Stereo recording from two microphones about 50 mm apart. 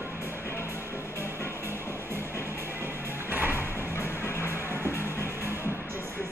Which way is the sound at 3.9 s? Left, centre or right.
Left.